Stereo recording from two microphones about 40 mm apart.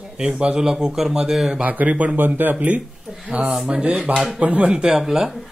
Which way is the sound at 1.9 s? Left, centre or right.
Right.